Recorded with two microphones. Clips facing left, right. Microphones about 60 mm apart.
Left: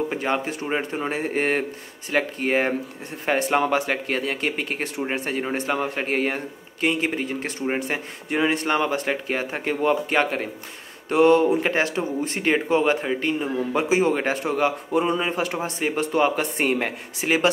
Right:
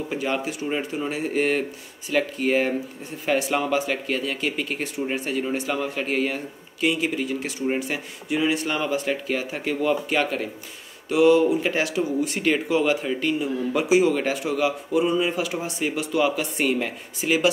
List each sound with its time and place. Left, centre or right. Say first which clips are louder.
0.1 s speech: left 1 dB; left
11.1 s speech: left 1 dB; left
11.7 s speech: even; left